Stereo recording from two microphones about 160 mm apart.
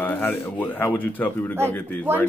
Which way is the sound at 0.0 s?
15° left (ahead or behind).